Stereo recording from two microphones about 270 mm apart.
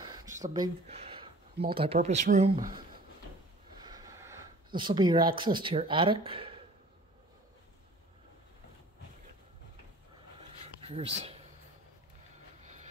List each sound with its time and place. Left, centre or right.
0.1 s a sound: centre
0.5 s speech: centre
3.8 s snort: centre
4.7 s speech: centre
10.8 s speech: right